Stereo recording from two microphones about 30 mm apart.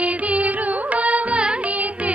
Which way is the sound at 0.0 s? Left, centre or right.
Right.